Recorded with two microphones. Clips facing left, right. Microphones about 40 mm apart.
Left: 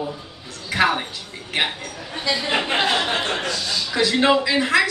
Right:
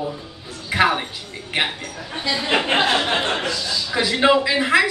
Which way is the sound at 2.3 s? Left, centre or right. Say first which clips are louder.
Right 3 dB; centre.